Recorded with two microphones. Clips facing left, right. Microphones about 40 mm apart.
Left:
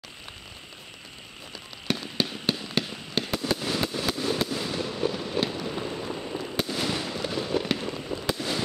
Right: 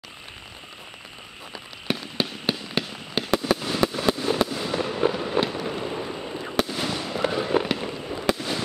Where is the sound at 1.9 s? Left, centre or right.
Centre.